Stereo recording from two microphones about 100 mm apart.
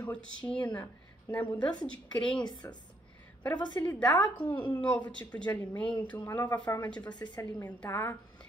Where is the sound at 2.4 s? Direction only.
45° left (ahead or behind).